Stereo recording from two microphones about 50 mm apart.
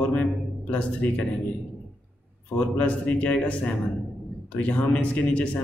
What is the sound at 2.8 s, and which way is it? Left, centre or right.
A man's voice, left.